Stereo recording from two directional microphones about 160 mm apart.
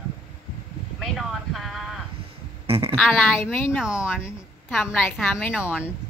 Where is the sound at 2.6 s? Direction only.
35° right (ahead or behind).